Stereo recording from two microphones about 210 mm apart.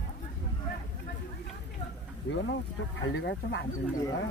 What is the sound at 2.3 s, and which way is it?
Speech, 60° left (ahead or behind).